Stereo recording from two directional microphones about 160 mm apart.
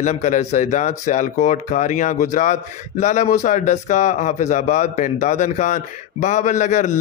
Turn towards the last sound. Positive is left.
turn(degrees=50)  # may be behind; listen again after turning